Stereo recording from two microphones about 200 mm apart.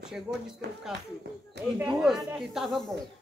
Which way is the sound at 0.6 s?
60° right (ahead or behind).